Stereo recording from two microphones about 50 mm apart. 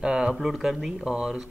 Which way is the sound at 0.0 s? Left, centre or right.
Centre.